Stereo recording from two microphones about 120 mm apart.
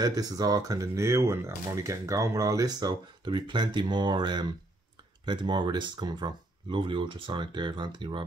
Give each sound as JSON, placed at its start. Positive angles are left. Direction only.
{"t": 0.0, "sound": "speech", "side_deg": -30}